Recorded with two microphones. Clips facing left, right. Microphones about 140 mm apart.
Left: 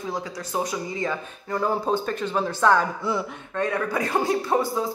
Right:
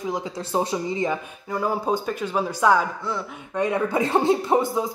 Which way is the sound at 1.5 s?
10° right (ahead or behind).